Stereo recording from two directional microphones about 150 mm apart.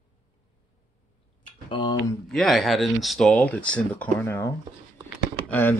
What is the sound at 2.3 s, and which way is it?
Speech, centre (ahead or behind).